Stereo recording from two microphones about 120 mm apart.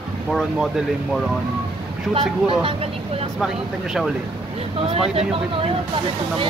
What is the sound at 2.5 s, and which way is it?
Speech, 45° right (ahead or behind).